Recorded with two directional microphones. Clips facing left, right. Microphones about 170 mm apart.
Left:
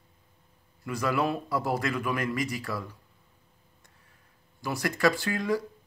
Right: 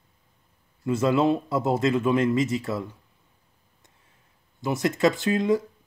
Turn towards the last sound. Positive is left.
turn(degrees=-20)  # may be behind; listen again after turning